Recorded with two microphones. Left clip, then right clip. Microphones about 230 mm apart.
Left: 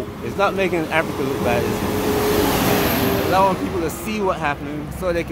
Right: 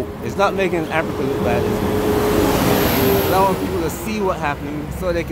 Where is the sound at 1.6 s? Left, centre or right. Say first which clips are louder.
Right 2 dB; left.